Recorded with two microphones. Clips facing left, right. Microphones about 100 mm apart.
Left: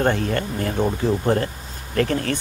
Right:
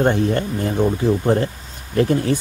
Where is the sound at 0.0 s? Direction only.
20° right (ahead or behind).